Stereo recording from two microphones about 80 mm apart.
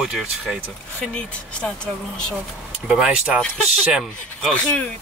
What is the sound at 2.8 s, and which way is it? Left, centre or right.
Speech, centre.